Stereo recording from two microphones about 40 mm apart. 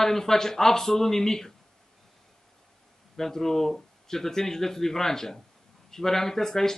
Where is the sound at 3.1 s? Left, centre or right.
Centre.